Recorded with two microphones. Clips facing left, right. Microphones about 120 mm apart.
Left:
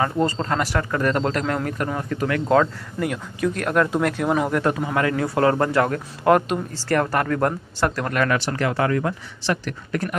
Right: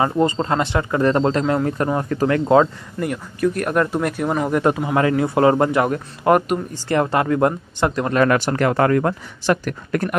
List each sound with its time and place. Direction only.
0.0 s a man's voice: 20° right (ahead or behind); by 2.4 s 35° right (ahead or behind)
2.4 s a man's voice: 20° right (ahead or behind)
3.0 s speech: 5° right (ahead or behind)
4.5 s a man's voice: 20° right (ahead or behind)
6.2 s speech: 5° right (ahead or behind)
6.9 s a man's voice: 20° right (ahead or behind)
8.2 s speech: 45° right (ahead or behind)